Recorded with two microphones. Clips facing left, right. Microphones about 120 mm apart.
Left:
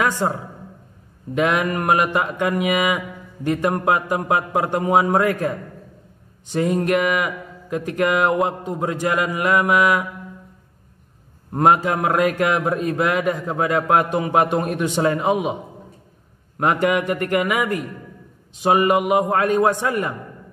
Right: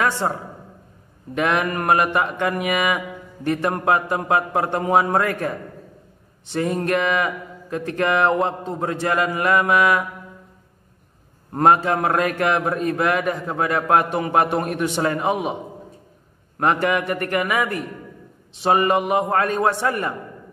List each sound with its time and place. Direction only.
0.2 s a man's voice: 20° left (ahead or behind)
11.5 s a man's voice: 20° left (ahead or behind)